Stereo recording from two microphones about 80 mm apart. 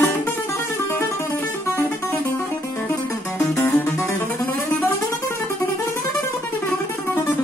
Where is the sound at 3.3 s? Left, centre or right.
Left.